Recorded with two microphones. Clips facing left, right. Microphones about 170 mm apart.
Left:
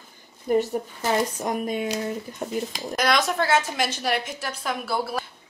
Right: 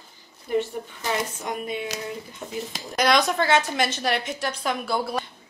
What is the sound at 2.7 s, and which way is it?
A woman's voice, centre (ahead or behind).